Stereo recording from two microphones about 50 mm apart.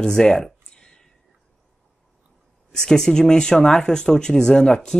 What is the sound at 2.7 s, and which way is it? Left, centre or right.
Speech, centre.